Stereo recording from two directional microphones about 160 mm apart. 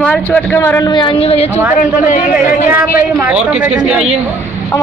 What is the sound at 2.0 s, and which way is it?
Speech, 50° left (ahead or behind).